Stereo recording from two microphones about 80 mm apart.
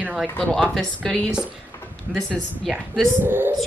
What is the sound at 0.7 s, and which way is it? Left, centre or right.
Speech, centre.